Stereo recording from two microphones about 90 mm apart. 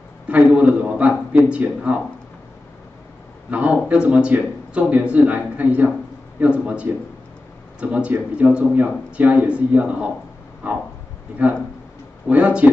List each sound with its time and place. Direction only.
0.3 s a man's voice: 15° right (ahead or behind)
3.4 s a man's voice: 15° right (ahead or behind)
10.6 s a sound: 20° right (ahead or behind)
11.4 s a man's voice: 15° right (ahead or behind)